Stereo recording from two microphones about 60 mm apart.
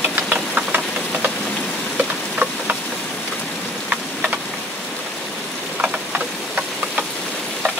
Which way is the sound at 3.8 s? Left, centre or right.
Right.